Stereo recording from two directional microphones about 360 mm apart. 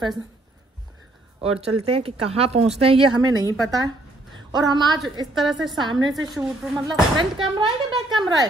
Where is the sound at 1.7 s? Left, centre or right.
Centre.